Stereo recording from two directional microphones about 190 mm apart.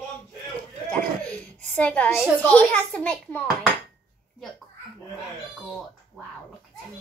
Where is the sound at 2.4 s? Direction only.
5° left (ahead or behind).